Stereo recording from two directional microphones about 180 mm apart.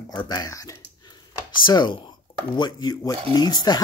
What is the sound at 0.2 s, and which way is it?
Speech, 20° left (ahead or behind).